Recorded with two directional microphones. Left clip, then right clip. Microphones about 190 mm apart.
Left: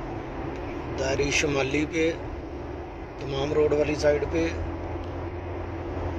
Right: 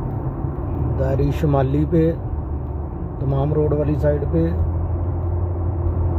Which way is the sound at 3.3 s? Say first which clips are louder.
Right 2 dB; 40° right (ahead or behind).